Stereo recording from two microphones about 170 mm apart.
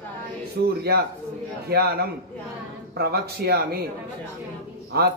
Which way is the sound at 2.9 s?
70° right (ahead or behind).